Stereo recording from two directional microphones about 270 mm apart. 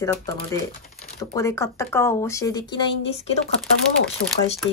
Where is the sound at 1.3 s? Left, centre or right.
Centre.